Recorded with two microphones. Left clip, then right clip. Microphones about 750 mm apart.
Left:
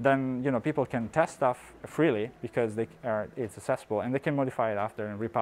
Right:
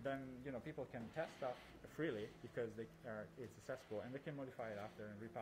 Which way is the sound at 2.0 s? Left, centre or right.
Left.